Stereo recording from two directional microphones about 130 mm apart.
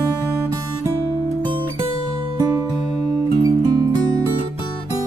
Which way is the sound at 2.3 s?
35° right (ahead or behind).